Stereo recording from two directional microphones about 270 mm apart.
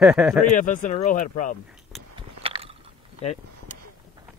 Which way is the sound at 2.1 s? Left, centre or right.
Centre.